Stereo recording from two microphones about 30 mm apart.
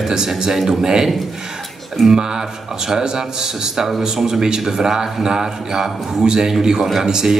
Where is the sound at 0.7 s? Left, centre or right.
Centre.